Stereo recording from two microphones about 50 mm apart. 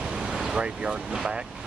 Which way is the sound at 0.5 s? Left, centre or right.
Centre.